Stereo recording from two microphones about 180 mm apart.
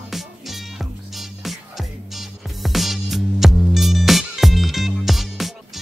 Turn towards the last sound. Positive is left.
turn(degrees=0)  # may be behind; listen again after turning